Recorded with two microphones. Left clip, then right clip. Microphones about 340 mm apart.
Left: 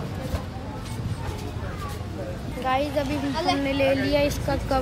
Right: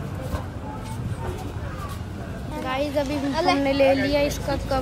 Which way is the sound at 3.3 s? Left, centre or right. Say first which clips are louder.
Right 4 dB; centre.